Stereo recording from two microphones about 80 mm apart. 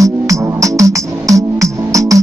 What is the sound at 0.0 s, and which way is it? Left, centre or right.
Music, right.